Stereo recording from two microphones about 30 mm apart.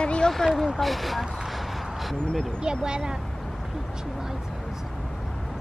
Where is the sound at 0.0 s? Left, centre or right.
Left.